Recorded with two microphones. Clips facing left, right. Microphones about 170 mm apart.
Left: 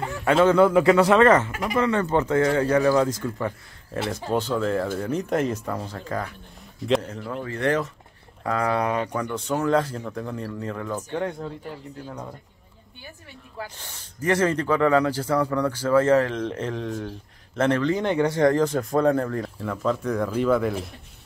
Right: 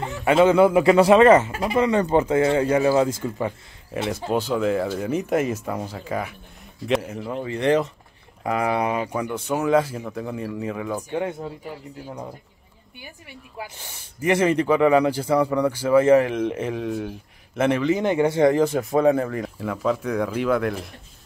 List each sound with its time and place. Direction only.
0.2 s speech: 10° right (ahead or behind)
1.5 s speech: 30° right (ahead or behind)
1.8 s speech: 15° right (ahead or behind)
7.2 s speech: 20° right (ahead or behind); by 20.7 s centre (ahead or behind)